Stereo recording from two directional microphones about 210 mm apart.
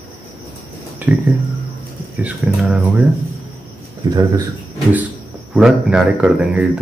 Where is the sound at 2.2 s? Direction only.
5° right (ahead or behind).